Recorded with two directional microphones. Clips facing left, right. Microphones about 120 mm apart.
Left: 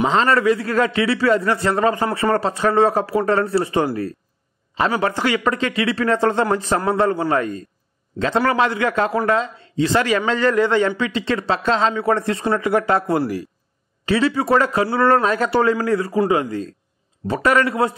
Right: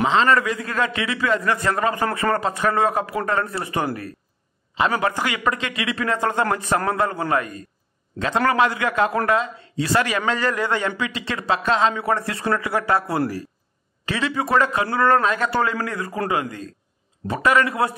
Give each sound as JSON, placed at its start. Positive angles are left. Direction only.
{"t": 0.1, "sound": "a man's voice", "side_deg": 35}
{"t": 14.0, "sound": "a man's voice", "side_deg": 30}
{"t": 17.3, "sound": "a man's voice", "side_deg": 35}